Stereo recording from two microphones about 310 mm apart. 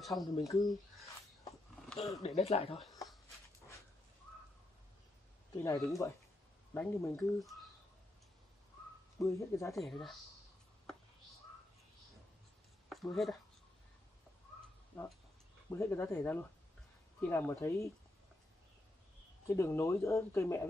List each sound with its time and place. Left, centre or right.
0.4 s speech: centre
2.2 s speech: centre
5.6 s speech: centre
9.2 s speech: centre
12.9 s speech: centre
14.9 s speech: centre
19.4 s speech: centre